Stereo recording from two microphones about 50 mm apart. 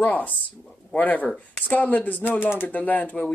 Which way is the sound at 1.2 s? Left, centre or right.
Centre.